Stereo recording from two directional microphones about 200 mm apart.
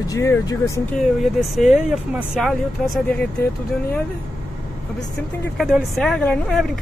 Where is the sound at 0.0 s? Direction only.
15° left (ahead or behind).